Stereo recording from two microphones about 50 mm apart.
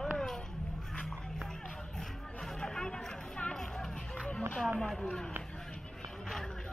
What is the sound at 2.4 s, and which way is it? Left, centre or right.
Music, centre.